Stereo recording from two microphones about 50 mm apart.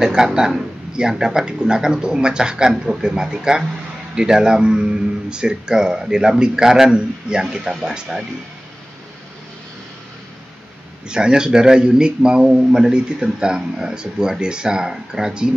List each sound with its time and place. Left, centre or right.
0.0 s a man's voice: centre
11.1 s a man's voice: centre